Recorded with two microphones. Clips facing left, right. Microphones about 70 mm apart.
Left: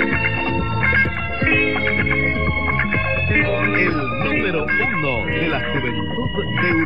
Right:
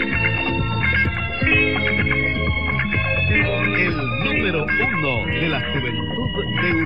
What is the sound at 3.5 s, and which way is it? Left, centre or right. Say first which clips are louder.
Speech: left 3 dB; centre.